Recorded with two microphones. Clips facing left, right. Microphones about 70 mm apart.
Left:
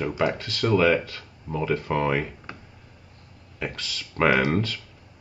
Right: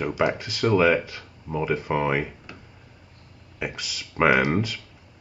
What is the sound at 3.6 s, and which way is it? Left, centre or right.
Speech, centre.